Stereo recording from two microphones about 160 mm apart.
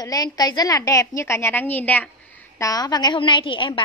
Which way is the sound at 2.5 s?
20° left (ahead or behind).